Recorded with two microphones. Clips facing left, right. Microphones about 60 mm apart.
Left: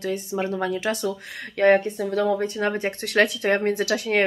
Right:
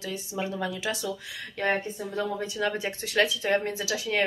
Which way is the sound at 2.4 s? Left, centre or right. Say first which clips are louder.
Left 5 dB; left.